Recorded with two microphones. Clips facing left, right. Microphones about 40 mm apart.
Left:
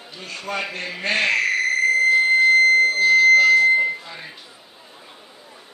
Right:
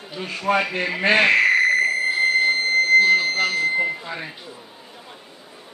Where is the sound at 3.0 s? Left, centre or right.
Right.